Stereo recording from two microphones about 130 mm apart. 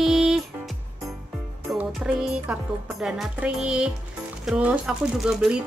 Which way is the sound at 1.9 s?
5° right (ahead or behind).